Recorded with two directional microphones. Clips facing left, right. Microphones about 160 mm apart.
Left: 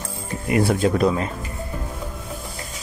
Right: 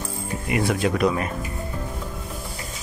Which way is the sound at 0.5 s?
35° left (ahead or behind).